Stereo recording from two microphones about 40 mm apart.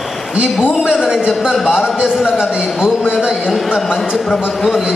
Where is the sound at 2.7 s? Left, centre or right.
Centre.